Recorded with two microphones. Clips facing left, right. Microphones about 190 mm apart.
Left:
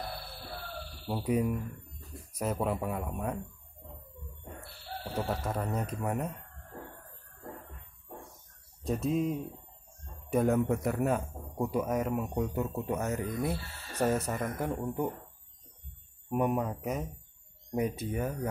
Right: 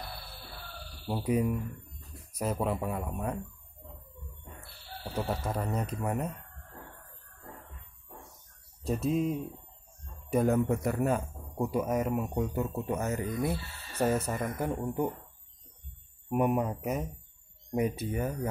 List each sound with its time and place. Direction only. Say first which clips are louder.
1.0 s a man's voice: right 1 dB; 5° right (ahead or behind)
5.2 s a man's voice: right 1 dB; centre (ahead or behind)
8.8 s a man's voice: right 1 dB; centre (ahead or behind)
10.3 s a man's voice: right 1 dB; centre (ahead or behind)
16.3 s a man's voice: right 2 dB; 10° right (ahead or behind)